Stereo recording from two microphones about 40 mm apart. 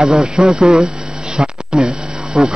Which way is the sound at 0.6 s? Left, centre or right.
Centre.